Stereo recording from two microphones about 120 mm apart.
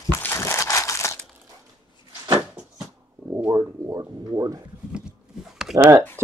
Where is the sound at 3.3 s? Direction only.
20° right (ahead or behind).